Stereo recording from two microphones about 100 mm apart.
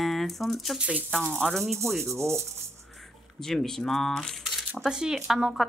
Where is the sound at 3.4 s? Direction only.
5° left (ahead or behind).